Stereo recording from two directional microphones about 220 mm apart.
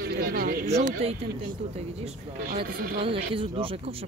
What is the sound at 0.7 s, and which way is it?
Speech, 30° right (ahead or behind).